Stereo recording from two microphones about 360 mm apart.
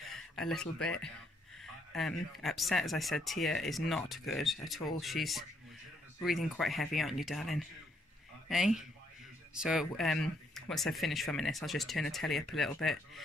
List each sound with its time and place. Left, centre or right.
0.1 s speech: centre